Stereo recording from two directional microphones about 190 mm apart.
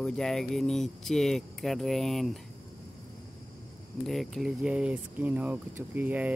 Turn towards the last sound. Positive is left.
turn(degrees=-10)  # may be behind; listen again after turning